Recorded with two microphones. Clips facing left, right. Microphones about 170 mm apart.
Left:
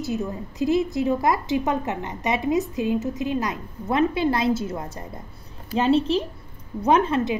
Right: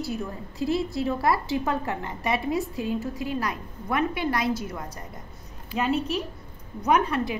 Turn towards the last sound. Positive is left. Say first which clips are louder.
# left 4 dB
turn(degrees=25)  # may be behind; listen again after turning